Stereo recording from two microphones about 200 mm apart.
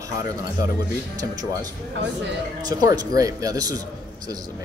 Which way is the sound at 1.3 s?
20° right (ahead or behind).